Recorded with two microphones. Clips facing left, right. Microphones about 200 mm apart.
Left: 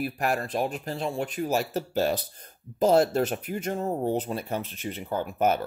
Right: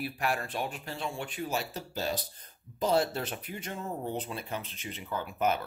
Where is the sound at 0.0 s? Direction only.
45° left (ahead or behind); by 2.1 s 60° left (ahead or behind).